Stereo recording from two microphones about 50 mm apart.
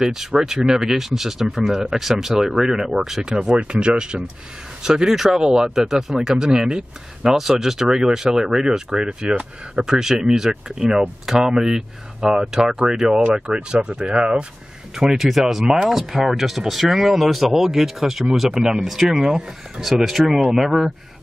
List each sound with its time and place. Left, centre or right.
0.0 s speech: centre
11.0 s speech: centre
11.4 s speech: centre
15.0 s speech: centre